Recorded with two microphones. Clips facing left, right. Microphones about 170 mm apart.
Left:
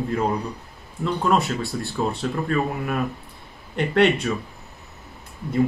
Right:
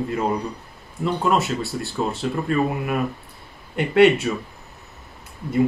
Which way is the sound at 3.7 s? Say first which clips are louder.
Right 4 dB; 5° right (ahead or behind).